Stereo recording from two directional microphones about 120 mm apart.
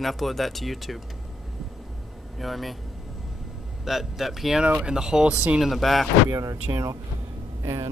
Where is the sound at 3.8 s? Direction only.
5° right (ahead or behind).